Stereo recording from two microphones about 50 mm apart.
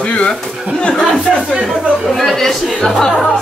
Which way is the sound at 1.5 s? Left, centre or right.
Centre.